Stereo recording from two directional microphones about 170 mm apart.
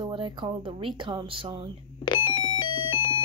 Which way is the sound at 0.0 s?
30° right (ahead or behind).